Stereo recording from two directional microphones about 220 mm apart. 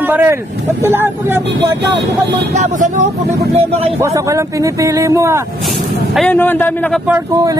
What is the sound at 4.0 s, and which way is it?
Speech, 15° right (ahead or behind).